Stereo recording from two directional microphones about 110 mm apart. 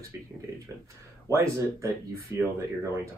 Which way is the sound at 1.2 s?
25° right (ahead or behind).